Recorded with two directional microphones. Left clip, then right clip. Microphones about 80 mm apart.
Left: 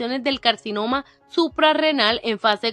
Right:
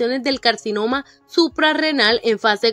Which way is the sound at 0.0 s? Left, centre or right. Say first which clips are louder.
Right 3 dB; right.